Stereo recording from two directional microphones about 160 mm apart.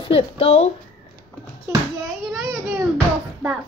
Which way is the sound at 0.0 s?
35° left (ahead or behind).